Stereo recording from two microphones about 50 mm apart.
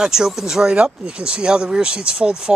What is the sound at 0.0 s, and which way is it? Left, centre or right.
Speech, centre.